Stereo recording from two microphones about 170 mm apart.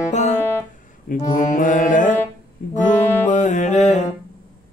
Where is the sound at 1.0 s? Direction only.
50° left (ahead or behind).